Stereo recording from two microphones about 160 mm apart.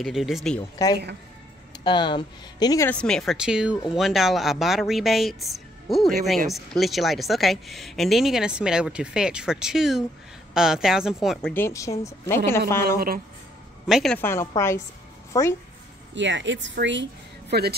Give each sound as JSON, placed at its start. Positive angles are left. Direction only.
{"t": 0.0, "sound": "a woman's voice", "side_deg": 0}
{"t": 0.8, "sound": "speech", "side_deg": 20}
{"t": 2.9, "sound": "a woman's voice", "side_deg": 5}
{"t": 11.5, "sound": "speech", "side_deg": 15}
{"t": 12.8, "sound": "a woman's voice", "side_deg": -70}
{"t": 13.8, "sound": "a woman's voice", "side_deg": -5}
{"t": 14.1, "sound": "speech", "side_deg": 15}
{"t": 16.7, "sound": "speech", "side_deg": -90}